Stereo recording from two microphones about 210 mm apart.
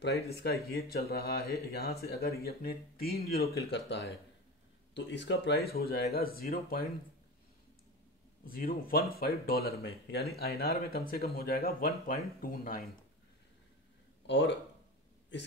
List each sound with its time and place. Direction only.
0.3 s speech: 50° left (ahead or behind)
8.5 s speech: 45° left (ahead or behind)
14.2 s speech: 55° left (ahead or behind)